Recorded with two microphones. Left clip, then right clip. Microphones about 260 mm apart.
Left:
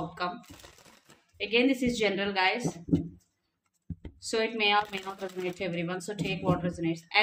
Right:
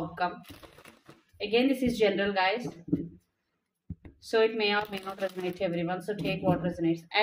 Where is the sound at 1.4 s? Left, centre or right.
Centre.